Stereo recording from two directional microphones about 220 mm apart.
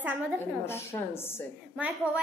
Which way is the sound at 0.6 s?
10° left (ahead or behind).